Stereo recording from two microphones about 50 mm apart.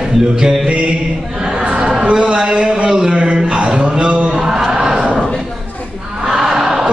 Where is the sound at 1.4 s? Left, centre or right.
Centre.